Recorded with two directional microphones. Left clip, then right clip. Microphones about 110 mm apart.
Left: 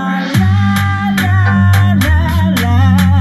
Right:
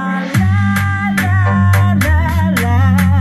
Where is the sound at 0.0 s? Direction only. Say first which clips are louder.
Left 2 dB; 20° left (ahead or behind).